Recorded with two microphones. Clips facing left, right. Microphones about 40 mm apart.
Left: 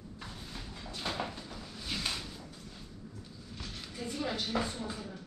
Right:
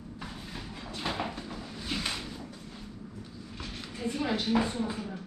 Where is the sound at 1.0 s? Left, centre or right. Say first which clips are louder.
Right 3 dB; right.